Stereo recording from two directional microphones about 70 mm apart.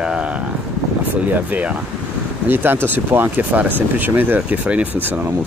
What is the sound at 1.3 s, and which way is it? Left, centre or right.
Speech, right.